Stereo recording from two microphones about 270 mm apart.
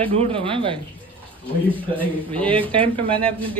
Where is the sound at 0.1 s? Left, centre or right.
Centre.